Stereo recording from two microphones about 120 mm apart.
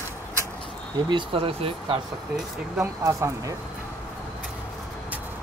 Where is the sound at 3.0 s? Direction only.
25° right (ahead or behind).